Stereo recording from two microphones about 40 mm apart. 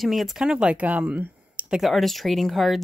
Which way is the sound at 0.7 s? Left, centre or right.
Right.